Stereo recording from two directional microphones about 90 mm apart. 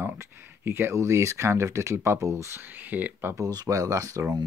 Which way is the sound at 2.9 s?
20° right (ahead or behind).